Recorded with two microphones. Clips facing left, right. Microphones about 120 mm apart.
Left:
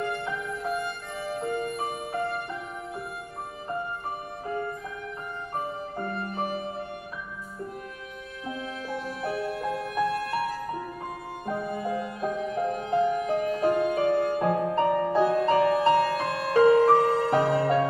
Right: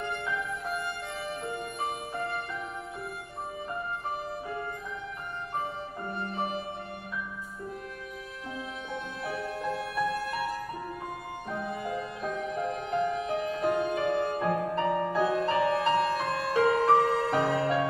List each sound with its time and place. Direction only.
0.7 s music: centre (ahead or behind)
8.5 s music: centre (ahead or behind)
11.7 s music: centre (ahead or behind)
14.5 s music: 35° left (ahead or behind)
14.9 s music: centre (ahead or behind)
15.1 s music: 30° left (ahead or behind)
15.9 s music: centre (ahead or behind)